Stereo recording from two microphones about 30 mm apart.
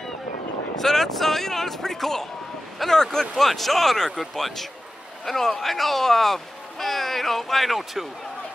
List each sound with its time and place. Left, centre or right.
0.7 s speech: centre
3.3 s speech: centre
5.2 s speech: centre